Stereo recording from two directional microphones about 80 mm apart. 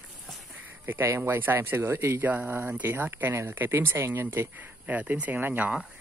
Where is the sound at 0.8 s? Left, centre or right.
Right.